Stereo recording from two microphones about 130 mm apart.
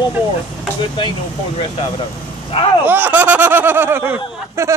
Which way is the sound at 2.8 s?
15° right (ahead or behind).